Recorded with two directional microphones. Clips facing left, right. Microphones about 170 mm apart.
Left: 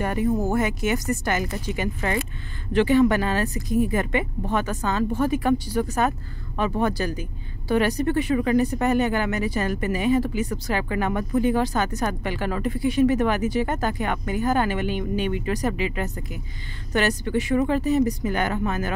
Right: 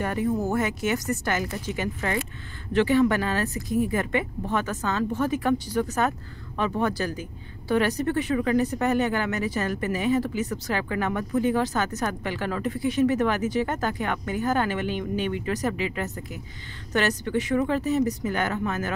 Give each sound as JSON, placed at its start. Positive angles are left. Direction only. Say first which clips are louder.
{"t": 0.0, "sound": "speech", "louder": "left 2 dB", "side_deg": 15}